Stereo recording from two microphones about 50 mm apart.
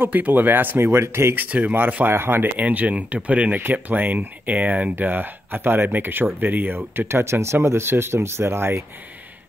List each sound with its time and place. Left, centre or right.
0.0 s speech: right
0.9 s speech: right
1.3 s speech: right
2.0 s speech: right
2.5 s speech: right
4.9 s speech: right